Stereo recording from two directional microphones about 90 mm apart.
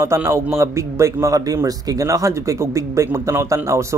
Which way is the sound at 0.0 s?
30° right (ahead or behind).